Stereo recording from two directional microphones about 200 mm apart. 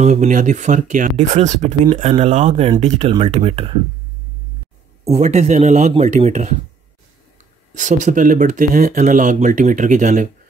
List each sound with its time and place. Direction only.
0.0 s speech: 35° right (ahead or behind)
5.0 s speech: 35° right (ahead or behind)
7.7 s speech: 40° right (ahead or behind)